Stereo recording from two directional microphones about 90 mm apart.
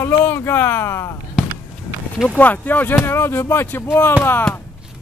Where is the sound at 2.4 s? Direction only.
20° left (ahead or behind).